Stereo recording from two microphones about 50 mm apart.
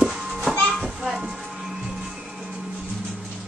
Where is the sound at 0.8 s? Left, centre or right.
Centre.